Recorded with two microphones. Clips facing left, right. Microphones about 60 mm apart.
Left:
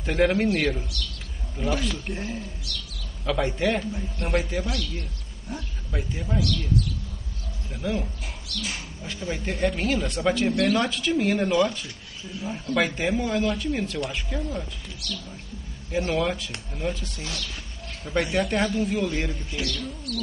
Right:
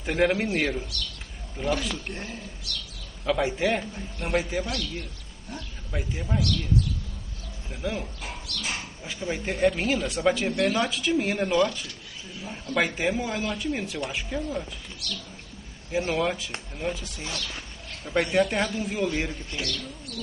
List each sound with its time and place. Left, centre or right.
0.0 s a man's voice: centre
7.7 s speech: centre
8.5 s speech: right
9.2 s a man's voice: centre
15.9 s a man's voice: centre